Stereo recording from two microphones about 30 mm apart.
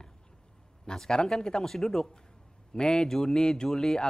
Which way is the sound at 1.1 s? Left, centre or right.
Left.